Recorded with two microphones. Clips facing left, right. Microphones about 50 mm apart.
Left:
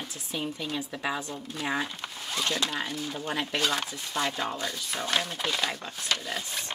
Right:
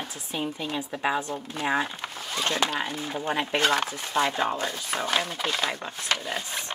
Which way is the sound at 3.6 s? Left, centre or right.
Right.